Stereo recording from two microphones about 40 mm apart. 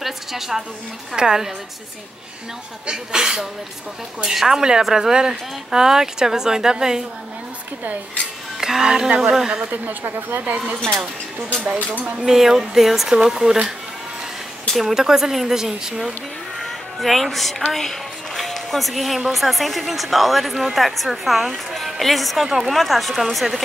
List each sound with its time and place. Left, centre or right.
0.0 s a woman's voice: centre
2.9 s speech: centre
8.5 s speech: centre
10.0 s a woman's voice: right
11.6 s speech: right
12.3 s speech: centre
13.1 s speech: centre
14.8 s speech: centre
16.6 s speech: centre